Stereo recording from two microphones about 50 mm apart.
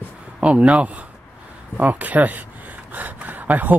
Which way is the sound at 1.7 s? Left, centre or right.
Right.